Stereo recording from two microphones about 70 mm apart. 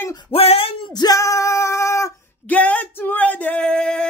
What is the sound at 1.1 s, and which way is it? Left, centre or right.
Singing, left.